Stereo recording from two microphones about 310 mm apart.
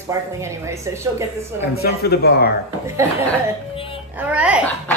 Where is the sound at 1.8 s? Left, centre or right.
Left.